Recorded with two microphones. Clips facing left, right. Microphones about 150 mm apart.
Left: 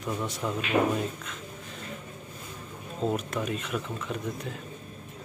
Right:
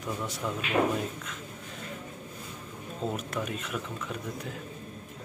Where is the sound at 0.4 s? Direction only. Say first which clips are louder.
Left 2 dB; 5° left (ahead or behind).